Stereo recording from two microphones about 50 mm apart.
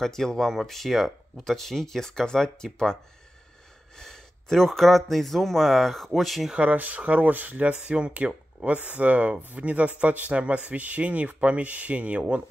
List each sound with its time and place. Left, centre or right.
0.0 s speech: centre
6.5 s speech: right